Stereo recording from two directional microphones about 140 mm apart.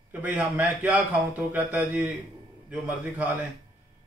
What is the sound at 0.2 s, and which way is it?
A man's voice, 10° right (ahead or behind).